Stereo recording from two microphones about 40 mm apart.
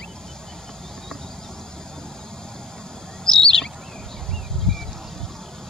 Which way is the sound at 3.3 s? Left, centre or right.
Centre.